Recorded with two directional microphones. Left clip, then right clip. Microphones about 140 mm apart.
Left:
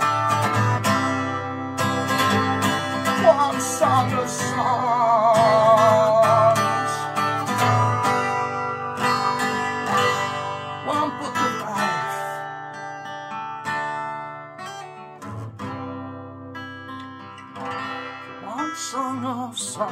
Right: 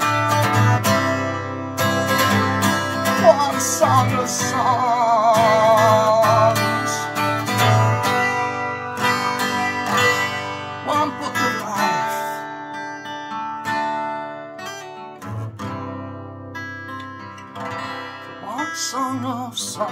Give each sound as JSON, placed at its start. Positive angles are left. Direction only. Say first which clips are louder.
{"t": 0.0, "sound": "music", "louder": "right 2 dB", "side_deg": -25}
{"t": 4.8, "sound": "music", "louder": "even", "side_deg": -10}
{"t": 5.3, "sound": "music", "louder": "right 1 dB", "side_deg": -25}
{"t": 13.3, "sound": "music", "louder": "right 4 dB", "side_deg": -25}
{"t": 17.6, "sound": "music", "louder": "right 1 dB", "side_deg": -30}